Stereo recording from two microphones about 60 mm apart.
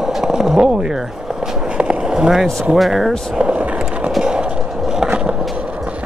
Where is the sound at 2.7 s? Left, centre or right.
Centre.